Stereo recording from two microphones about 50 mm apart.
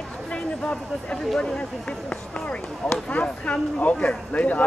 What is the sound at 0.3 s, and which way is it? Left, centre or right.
Speech, left.